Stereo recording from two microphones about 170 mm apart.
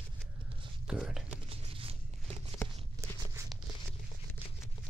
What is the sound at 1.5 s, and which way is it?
Zipper, 35° right (ahead or behind).